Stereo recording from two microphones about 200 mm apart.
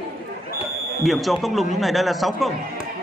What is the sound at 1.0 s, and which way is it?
A man's voice, centre (ahead or behind).